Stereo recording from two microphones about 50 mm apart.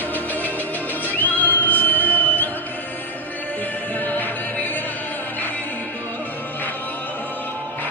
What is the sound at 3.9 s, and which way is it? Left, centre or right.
Music, left.